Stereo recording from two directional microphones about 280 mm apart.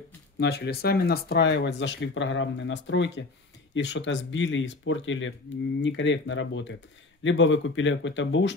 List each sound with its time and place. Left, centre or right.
0.4 s speech: left